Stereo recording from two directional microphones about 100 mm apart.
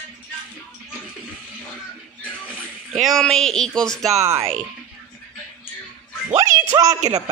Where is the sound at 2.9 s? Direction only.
Centre (ahead or behind).